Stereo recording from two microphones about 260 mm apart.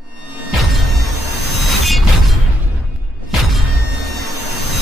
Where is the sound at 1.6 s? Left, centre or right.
Centre.